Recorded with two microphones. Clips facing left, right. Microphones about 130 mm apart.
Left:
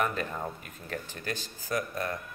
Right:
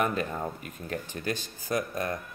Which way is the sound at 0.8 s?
20° right (ahead or behind).